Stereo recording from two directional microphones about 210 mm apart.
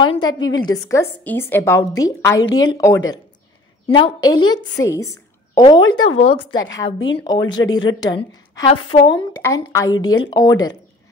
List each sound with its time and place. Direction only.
0.0 s a woman's voice: 20° left (ahead or behind)